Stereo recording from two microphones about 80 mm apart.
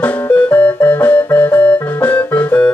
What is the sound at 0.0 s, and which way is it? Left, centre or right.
Music, left.